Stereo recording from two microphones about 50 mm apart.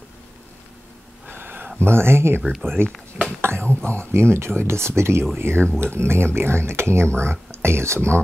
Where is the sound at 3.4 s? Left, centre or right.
Right.